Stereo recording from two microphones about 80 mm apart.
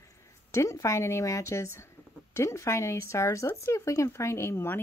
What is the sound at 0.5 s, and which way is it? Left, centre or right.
Speech, left.